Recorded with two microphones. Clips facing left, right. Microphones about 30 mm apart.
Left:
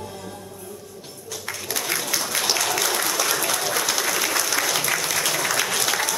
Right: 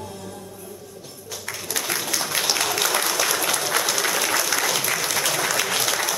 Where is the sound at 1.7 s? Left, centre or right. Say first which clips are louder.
Even; centre.